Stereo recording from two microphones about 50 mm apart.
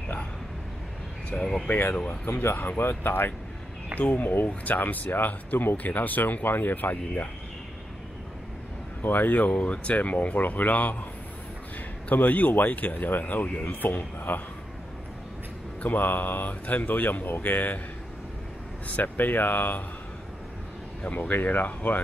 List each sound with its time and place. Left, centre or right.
1.3 s speech: centre
1.7 s speech: left
9.0 s speech: left
12.1 s speech: left
15.8 s speech: left
18.9 s speech: left
21.2 s speech: left